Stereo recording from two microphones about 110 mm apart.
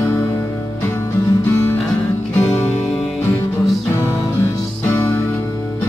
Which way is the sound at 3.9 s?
25° left (ahead or behind).